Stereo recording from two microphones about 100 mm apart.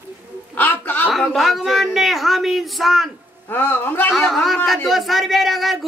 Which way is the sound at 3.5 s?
20° left (ahead or behind).